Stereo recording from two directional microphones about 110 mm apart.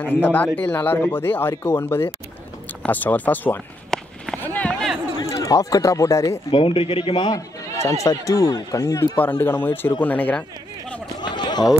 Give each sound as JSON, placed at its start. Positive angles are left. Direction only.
{"t": 0.0, "sound": "speech", "side_deg": 15}
{"t": 3.9, "sound": "run", "side_deg": 5}
{"t": 4.4, "sound": "run", "side_deg": 15}
{"t": 5.2, "sound": "speech", "side_deg": 30}
{"t": 6.5, "sound": "speech", "side_deg": 55}
{"t": 7.2, "sound": "a man's voice", "side_deg": 40}
{"t": 7.8, "sound": "speech", "side_deg": 30}
{"t": 11.2, "sound": "a sound", "side_deg": 40}